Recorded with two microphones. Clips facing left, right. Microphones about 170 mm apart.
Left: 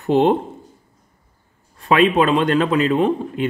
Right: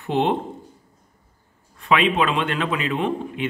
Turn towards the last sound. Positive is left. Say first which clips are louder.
# left 6 dB
turn(degrees=40)  # may be behind; listen again after turning